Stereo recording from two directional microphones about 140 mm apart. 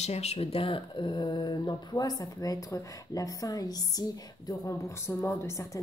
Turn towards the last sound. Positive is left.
turn(degrees=20)  # may be behind; listen again after turning